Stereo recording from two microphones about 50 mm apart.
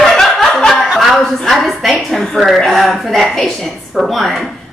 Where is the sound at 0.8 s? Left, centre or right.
Centre.